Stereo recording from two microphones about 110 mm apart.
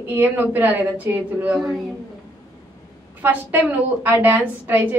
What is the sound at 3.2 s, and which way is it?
A woman's voice, 15° right (ahead or behind).